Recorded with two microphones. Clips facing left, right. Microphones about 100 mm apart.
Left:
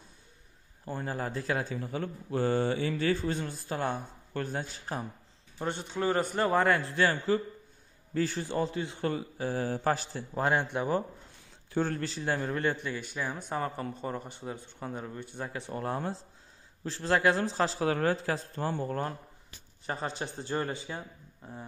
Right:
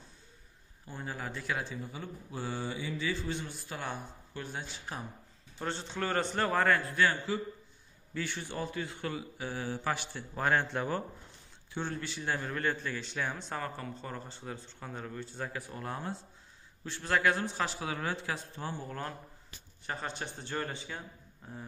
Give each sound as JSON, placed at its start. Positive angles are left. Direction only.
{"t": 0.8, "sound": "speech", "side_deg": 45}
{"t": 1.8, "sound": "speech", "side_deg": 60}
{"t": 5.6, "sound": "a man's voice", "side_deg": 15}
{"t": 6.4, "sound": "a man's voice", "side_deg": 20}
{"t": 10.3, "sound": "a man's voice", "side_deg": 20}
{"t": 11.7, "sound": "a man's voice", "side_deg": 40}
{"t": 13.6, "sound": "a man's voice", "side_deg": 25}
{"t": 15.7, "sound": "speech", "side_deg": 35}
{"t": 17.8, "sound": "speech", "side_deg": 45}
{"t": 18.7, "sound": "a man's voice", "side_deg": 55}
{"t": 19.9, "sound": "speech", "side_deg": 30}